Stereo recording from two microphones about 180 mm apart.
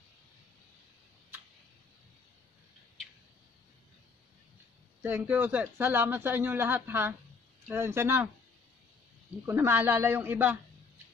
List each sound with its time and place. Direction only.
5.0 s speech: 10° right (ahead or behind)
9.5 s speech: 10° right (ahead or behind)